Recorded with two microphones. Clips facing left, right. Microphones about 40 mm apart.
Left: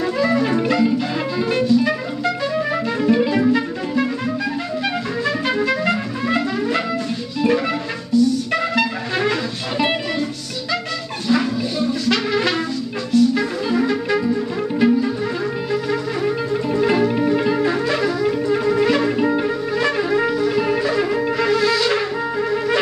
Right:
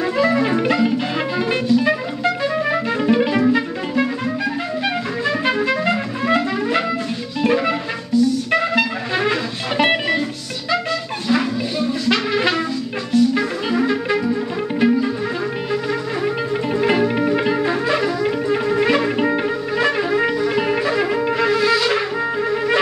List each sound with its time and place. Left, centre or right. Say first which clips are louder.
0.0 s music: right 1 dB; right
3.3 s music: even; centre
9.8 s music: right 3 dB; right
11.2 s music: left 1 dB; centre
17.5 s music: even; centre